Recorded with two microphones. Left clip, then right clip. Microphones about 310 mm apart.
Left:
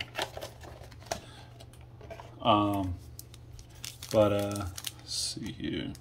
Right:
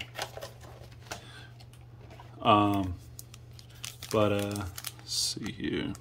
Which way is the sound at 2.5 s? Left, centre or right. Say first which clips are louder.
Right 2 dB; centre.